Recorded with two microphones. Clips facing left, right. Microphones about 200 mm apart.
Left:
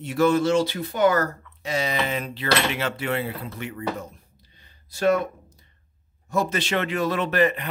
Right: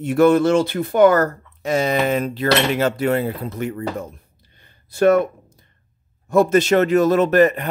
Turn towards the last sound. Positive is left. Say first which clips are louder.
# right 7 dB
turn(degrees=-45)  # may be behind; listen again after turning